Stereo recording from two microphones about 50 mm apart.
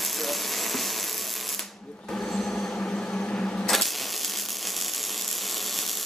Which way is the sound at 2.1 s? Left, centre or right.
Left.